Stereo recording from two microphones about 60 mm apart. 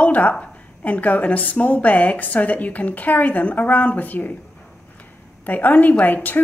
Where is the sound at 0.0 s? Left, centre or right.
Left.